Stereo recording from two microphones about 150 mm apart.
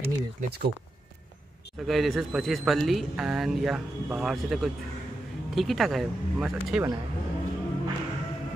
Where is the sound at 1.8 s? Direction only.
Centre (ahead or behind).